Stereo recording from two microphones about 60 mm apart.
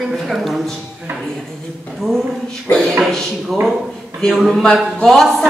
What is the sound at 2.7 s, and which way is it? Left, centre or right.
Speech, left.